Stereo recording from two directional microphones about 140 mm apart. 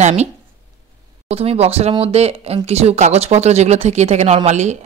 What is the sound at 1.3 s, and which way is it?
Speech, 45° right (ahead or behind).